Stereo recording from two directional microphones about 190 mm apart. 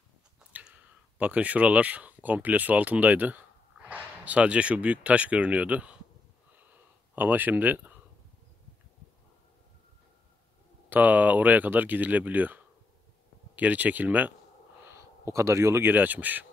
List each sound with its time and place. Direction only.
0.4 s speech: 5° right (ahead or behind)
7.2 s speech: 10° right (ahead or behind)
10.9 s speech: 10° right (ahead or behind)